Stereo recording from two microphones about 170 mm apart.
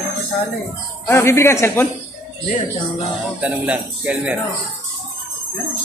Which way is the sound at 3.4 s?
10° right (ahead or behind).